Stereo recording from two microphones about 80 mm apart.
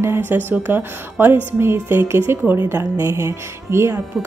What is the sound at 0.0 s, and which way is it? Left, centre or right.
A woman's voice, right.